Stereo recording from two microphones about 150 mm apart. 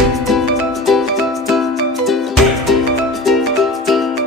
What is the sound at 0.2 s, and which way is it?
Music, centre (ahead or behind).